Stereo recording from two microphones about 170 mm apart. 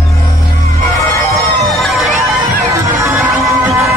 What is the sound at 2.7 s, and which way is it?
Music, 20° right (ahead or behind).